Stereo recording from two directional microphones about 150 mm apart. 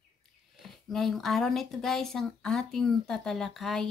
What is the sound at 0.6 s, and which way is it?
Speech, centre (ahead or behind).